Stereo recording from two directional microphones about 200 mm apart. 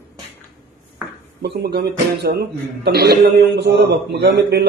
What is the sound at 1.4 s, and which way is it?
Speech, 55° right (ahead or behind).